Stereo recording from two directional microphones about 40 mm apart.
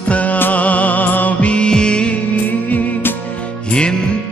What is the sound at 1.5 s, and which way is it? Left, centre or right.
Music, left.